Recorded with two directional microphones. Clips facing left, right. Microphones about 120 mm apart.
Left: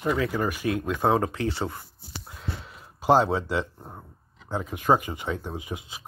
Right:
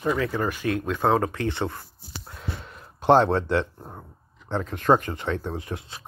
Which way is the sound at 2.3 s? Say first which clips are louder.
Right 1 dB; 5° left (ahead or behind).